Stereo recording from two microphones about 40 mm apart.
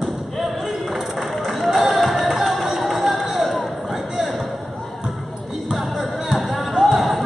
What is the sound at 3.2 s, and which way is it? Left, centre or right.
Basketball bounce, centre.